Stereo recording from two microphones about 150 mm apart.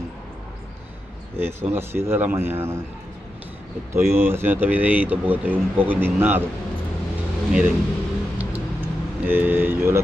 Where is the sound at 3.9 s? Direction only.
15° right (ahead or behind).